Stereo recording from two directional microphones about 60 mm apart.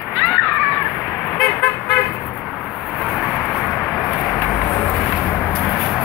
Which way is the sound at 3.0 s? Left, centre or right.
Centre.